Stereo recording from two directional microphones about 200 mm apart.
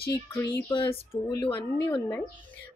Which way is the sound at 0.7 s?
30° left (ahead or behind).